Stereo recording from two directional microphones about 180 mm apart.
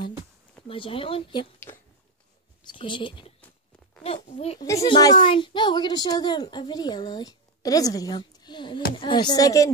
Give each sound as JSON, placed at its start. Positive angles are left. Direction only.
{"t": 0.7, "sound": "a woman's voice", "side_deg": 30}
{"t": 2.6, "sound": "a woman's voice", "side_deg": 25}